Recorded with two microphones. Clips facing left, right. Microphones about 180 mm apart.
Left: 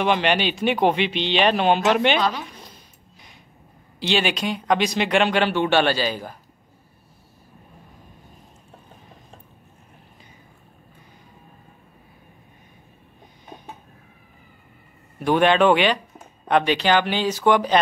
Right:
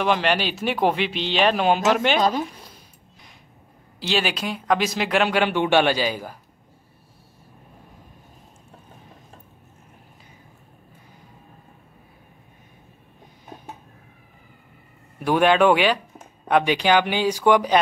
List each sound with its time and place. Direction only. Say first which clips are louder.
0.0 s speech: left 1 dB; centre (ahead or behind)
2.1 s speech: right 2 dB; 45° right (ahead or behind)
2.5 s a sound: left 1 dB; 5° right (ahead or behind)
4.0 s speech: left 2 dB; centre (ahead or behind)
15.1 s speech: even; 10° right (ahead or behind)